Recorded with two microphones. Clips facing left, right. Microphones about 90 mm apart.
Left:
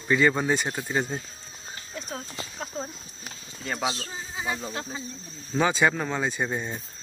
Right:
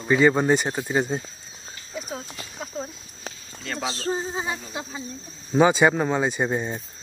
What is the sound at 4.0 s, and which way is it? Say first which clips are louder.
Speech: right 11 dB; 40° right (ahead or behind).